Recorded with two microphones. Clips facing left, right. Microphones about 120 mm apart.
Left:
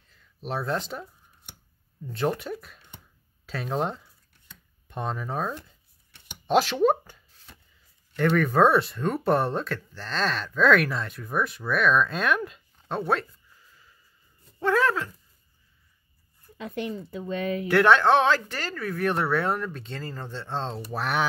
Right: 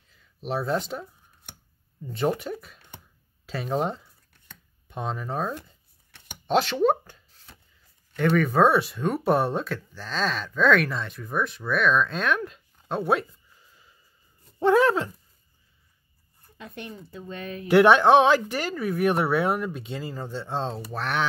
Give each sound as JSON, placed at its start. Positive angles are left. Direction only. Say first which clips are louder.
{"t": 0.5, "sound": "speech", "louder": "right 2 dB", "side_deg": 0}
{"t": 2.0, "sound": "speech", "louder": "right 1 dB", "side_deg": 0}
{"t": 6.4, "sound": "a sound", "louder": "even", "side_deg": 5}
{"t": 8.2, "sound": "speech", "louder": "even", "side_deg": 0}
{"t": 14.6, "sound": "a sound", "louder": "right 4 dB", "side_deg": -20}
{"t": 16.5, "sound": "a woman's voice", "louder": "left 7 dB", "side_deg": 90}
{"t": 17.6, "sound": "speech", "louder": "right 3 dB", "side_deg": -15}
{"t": 20.9, "sound": "speech", "louder": "left 2 dB", "side_deg": 5}